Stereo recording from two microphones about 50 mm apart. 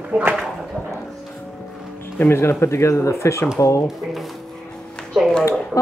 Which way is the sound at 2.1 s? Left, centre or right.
Left.